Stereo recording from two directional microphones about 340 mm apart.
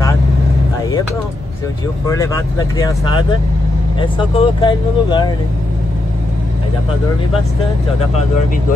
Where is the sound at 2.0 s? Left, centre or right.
Centre.